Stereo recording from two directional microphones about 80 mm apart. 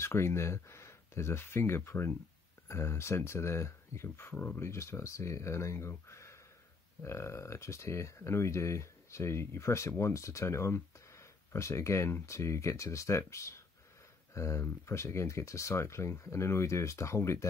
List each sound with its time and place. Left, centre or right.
0.0 s speech: left